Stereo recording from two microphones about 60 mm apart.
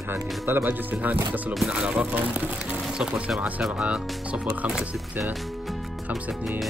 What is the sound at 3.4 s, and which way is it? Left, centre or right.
Speech, centre.